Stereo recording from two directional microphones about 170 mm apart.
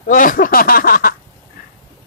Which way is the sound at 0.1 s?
55° left (ahead or behind).